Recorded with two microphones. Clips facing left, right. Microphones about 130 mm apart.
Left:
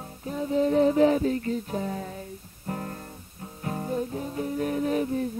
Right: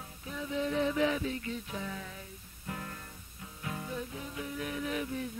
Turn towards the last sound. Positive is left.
turn(degrees=40)  # may be behind; listen again after turning